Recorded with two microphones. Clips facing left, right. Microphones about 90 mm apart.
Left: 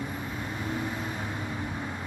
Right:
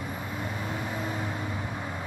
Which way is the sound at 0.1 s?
Centre (ahead or behind).